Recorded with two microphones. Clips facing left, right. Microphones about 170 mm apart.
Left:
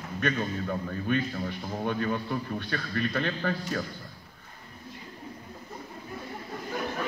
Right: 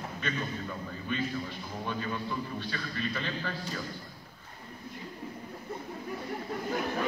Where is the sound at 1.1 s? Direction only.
55° left (ahead or behind).